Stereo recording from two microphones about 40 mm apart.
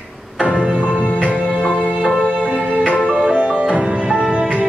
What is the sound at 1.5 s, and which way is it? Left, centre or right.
Music, right.